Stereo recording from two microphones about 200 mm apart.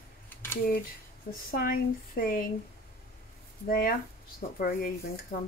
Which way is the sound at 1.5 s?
45° left (ahead or behind).